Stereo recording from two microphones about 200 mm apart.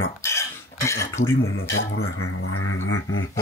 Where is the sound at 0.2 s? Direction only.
15° left (ahead or behind).